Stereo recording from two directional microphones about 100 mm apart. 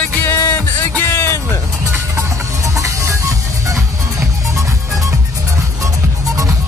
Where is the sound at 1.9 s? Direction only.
30° right (ahead or behind).